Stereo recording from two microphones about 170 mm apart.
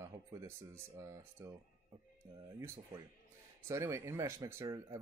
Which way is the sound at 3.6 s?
15° right (ahead or behind).